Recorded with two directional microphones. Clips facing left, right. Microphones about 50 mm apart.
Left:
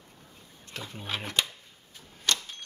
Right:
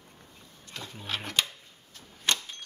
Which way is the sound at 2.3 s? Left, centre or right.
Right.